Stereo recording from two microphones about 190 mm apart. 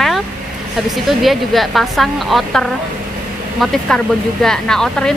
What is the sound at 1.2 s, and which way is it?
Speech, centre (ahead or behind).